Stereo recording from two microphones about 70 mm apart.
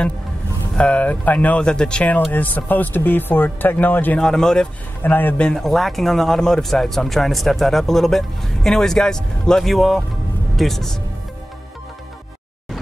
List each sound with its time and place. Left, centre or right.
0.7 s speech: centre
4.2 s speech: centre
5.0 s speech: left
5.4 s speech: centre